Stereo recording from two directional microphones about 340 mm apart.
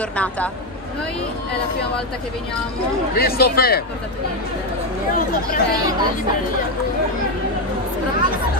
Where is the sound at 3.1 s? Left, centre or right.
Left.